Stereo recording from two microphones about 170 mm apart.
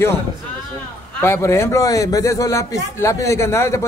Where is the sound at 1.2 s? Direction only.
15° left (ahead or behind).